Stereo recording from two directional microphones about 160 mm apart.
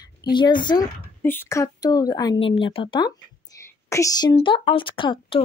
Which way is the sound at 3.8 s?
20° left (ahead or behind).